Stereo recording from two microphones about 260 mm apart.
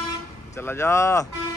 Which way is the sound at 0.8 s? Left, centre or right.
Centre.